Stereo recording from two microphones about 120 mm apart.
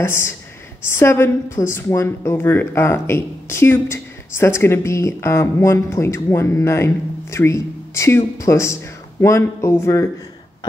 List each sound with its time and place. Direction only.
0.0 s a woman's voice: 20° left (ahead or behind)